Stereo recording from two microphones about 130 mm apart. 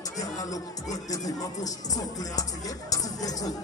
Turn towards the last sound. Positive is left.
turn(degrees=30)  # may be behind; listen again after turning